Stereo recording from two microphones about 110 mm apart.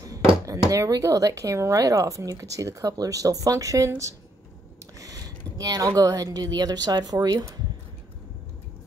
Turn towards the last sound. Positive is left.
turn(degrees=-35)  # may be behind; listen again after turning